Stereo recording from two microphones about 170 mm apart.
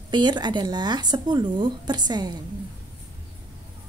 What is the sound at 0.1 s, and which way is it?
Speech, 25° right (ahead or behind).